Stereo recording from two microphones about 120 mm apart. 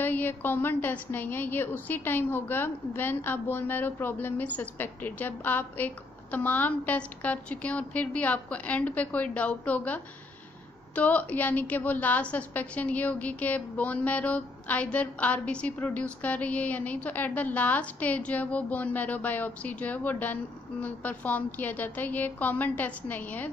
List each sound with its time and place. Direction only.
0.0 s a woman's voice: 15° left (ahead or behind)